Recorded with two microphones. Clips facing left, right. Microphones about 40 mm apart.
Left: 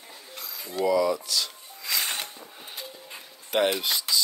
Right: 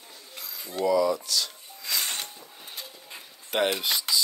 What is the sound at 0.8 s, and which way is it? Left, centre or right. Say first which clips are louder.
Speech: even; centre.